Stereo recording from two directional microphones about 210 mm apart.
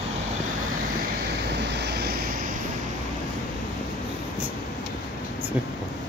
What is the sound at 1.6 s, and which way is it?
Vehicle, 55° right (ahead or behind).